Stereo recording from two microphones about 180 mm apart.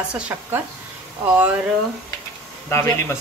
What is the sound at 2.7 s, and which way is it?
Speech, 15° left (ahead or behind).